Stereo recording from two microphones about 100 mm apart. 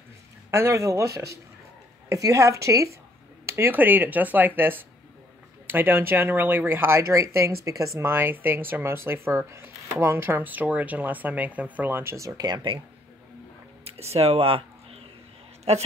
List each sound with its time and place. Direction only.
0.5 s speech: 25° right (ahead or behind)
8.0 s speech: 20° right (ahead or behind); by 12.8 s 50° right (ahead or behind)
13.8 s a sound: 90° right
15.7 s a woman's voice: 90° right